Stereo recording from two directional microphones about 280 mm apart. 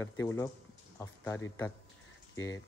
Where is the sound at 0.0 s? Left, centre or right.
Centre.